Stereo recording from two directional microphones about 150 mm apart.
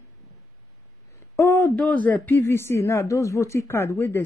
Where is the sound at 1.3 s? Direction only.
15° left (ahead or behind).